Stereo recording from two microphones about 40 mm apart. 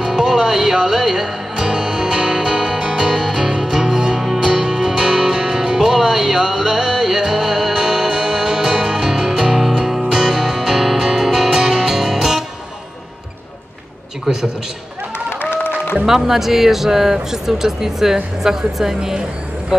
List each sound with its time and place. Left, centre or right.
0.0 s music: centre
14.2 s a man's voice: centre
15.5 s music: left
16.1 s speech: centre